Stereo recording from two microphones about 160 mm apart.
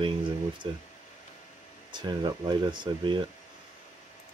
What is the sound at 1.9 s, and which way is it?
Speech, 25° right (ahead or behind).